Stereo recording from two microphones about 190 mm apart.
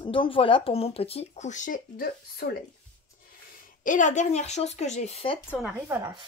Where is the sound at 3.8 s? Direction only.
40° left (ahead or behind).